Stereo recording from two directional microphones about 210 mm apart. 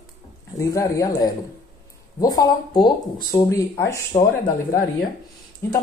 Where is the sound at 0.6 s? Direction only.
15° left (ahead or behind).